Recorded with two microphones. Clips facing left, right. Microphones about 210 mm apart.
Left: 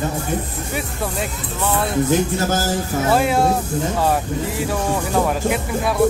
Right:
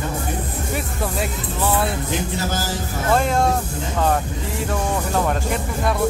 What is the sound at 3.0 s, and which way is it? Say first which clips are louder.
Speech: left 1 dB; 5° left (ahead or behind).